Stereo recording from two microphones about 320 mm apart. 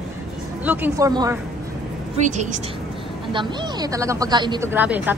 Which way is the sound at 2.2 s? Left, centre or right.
Right.